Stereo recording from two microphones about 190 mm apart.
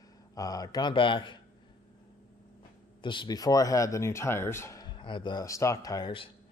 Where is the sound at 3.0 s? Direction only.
25° left (ahead or behind).